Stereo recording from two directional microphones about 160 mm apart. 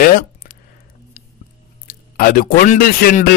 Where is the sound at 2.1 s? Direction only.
70° left (ahead or behind).